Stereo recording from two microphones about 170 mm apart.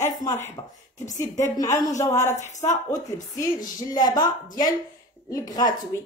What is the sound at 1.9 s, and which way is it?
Speech, 20° left (ahead or behind).